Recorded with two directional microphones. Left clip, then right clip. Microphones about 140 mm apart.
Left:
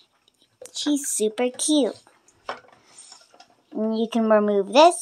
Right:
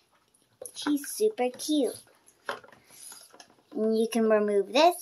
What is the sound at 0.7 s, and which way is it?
Speech, 40° left (ahead or behind).